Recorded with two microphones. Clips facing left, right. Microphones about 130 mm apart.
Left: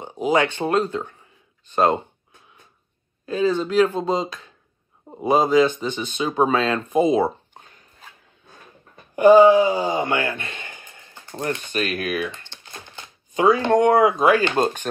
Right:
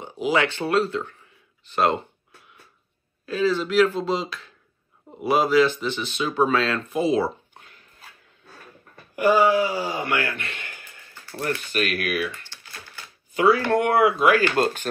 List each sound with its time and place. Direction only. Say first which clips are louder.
0.7 s speech: right 1 dB; 20° left (ahead or behind)
1.7 s a sound: left 3 dB; 20° left (ahead or behind)
3.3 s speech: left 2 dB; 20° left (ahead or behind)